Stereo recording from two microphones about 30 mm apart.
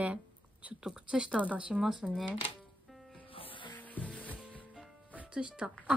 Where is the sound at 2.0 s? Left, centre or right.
Centre.